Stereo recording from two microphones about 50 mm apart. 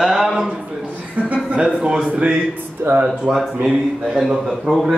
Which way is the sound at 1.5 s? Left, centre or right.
Centre.